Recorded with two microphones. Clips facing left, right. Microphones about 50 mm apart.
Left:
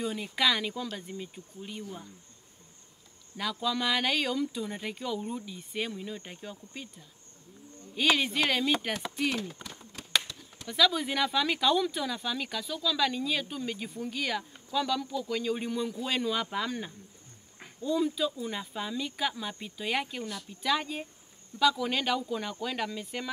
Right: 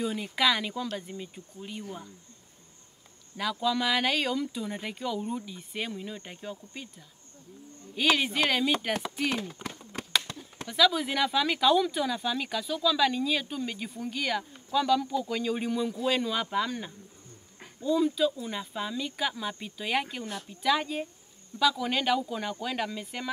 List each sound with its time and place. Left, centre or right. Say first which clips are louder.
0.0 s speech: right 2 dB; centre
3.3 s speech: right 3 dB; centre
7.9 s speech: right 1 dB; centre
10.3 s chop: right 5 dB; right
10.7 s speech: right 2 dB; centre